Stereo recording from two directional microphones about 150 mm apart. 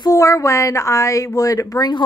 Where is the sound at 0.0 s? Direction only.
20° left (ahead or behind).